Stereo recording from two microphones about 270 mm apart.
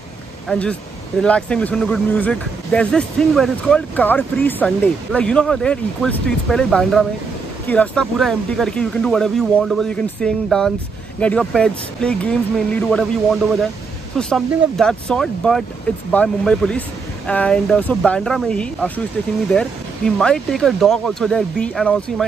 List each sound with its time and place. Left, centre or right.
0.5 s speech: centre
20.2 s speech: centre